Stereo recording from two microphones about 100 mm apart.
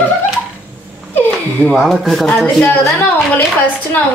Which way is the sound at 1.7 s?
Centre (ahead or behind).